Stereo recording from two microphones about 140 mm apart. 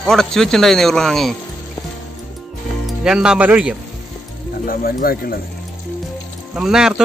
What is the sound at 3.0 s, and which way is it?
Speech, 5° right (ahead or behind).